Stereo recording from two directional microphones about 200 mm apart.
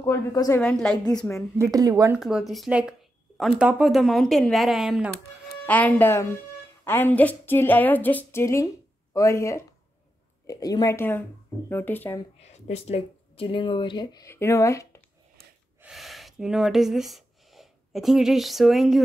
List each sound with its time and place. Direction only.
0.0 s a woman's voice: 15° left (ahead or behind)
0.6 s a woman's voice: 5° left (ahead or behind)
1.6 s speech: 20° right (ahead or behind)
2.1 s a woman's voice: centre (ahead or behind)
12.4 s speech: 35° left (ahead or behind); by 15.0 s 15° left (ahead or behind)
15.8 s speech: centre (ahead or behind)